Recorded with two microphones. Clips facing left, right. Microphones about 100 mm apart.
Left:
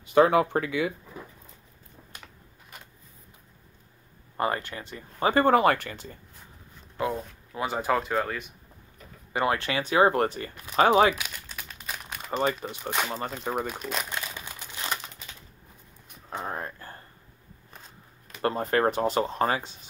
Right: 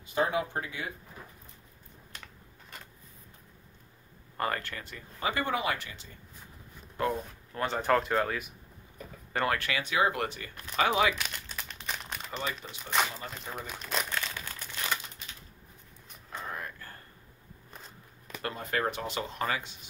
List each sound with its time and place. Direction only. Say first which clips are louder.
0.0 s speech: left 9 dB; 70° left (ahead or behind); by 0.9 s 90° left
4.4 s speech: left 4 dB; 20° left (ahead or behind)
5.2 s speech: left 10 dB; 45° left (ahead or behind)
7.0 s speech: left 1 dB; 5° left (ahead or behind)
9.3 s speech: left 4 dB; 20° left (ahead or behind); by 11.1 s 40° left (ahead or behind)
11.1 s crumpling: even; 5° left (ahead or behind)
12.3 s speech: left 10 dB; 45° left (ahead or behind)
13.8 s speech: left 2 dB; 5° left (ahead or behind)
14.1 s crumpling: even; 15° left (ahead or behind)
16.4 s a sound: left 3 dB; 35° left (ahead or behind)
18.4 s speech: left 8 dB; 40° left (ahead or behind)